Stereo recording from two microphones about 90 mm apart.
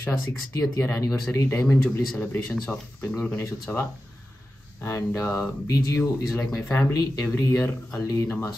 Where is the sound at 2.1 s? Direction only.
20° left (ahead or behind).